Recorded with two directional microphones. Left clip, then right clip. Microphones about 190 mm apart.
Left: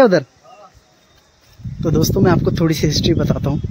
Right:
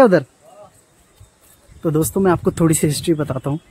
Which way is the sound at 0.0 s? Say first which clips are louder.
Even; 5° right (ahead or behind).